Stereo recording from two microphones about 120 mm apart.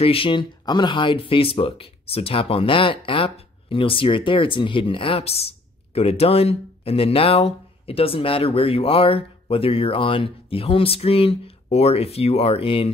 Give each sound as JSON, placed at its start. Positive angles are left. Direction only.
{"t": 0.0, "sound": "speech", "side_deg": 50}